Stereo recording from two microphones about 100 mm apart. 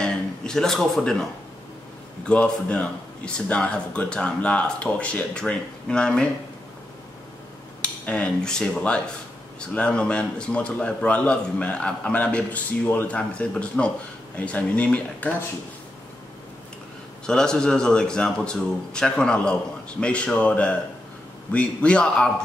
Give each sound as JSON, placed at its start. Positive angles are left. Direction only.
{"t": 0.0, "sound": "speech", "side_deg": 10}
{"t": 2.2, "sound": "a man's voice", "side_deg": 10}
{"t": 7.8, "sound": "a man's voice", "side_deg": 10}
{"t": 17.3, "sound": "a man's voice", "side_deg": 5}